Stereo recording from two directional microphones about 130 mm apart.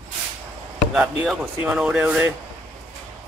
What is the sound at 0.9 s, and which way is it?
Speech, 10° right (ahead or behind).